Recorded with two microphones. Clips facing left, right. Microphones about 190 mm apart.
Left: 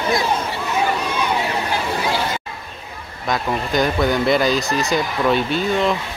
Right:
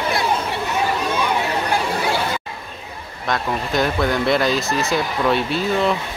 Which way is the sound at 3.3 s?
Centre (ahead or behind).